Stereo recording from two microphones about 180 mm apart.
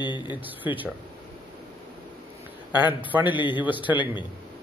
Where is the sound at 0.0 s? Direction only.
25° left (ahead or behind).